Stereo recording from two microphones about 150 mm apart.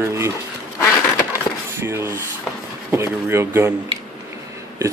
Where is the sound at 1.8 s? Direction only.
15° right (ahead or behind).